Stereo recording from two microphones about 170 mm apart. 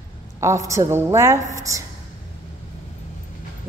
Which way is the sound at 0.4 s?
15° right (ahead or behind).